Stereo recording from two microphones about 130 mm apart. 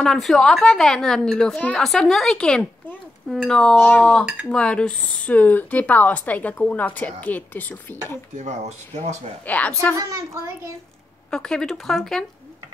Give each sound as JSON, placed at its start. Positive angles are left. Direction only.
{"t": 0.0, "sound": "a woman's voice", "side_deg": 5}
{"t": 8.4, "sound": "speech", "side_deg": -65}
{"t": 9.5, "sound": "speech", "side_deg": 10}
{"t": 9.9, "sound": "a woman's voice", "side_deg": -30}
{"t": 11.2, "sound": "a woman's voice", "side_deg": 5}